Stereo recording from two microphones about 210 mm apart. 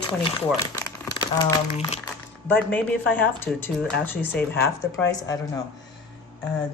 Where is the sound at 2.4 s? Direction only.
10° left (ahead or behind).